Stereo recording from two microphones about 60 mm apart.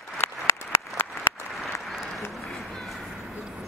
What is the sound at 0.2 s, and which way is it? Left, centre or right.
Applause, left.